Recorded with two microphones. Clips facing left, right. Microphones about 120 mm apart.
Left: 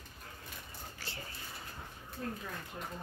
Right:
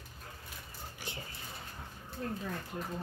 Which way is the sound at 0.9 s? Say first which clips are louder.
Right 3 dB; 15° right (ahead or behind).